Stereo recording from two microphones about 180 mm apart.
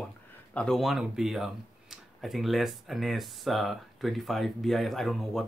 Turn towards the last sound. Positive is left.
turn(degrees=0)  # may be behind; listen again after turning